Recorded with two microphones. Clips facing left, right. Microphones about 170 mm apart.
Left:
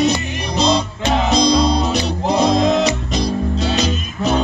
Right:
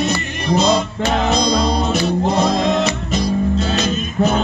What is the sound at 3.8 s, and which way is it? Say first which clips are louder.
Music: right 2 dB; 50° right (ahead or behind).